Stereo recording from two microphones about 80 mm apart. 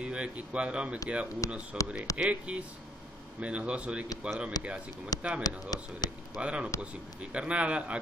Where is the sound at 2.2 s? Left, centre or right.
Centre.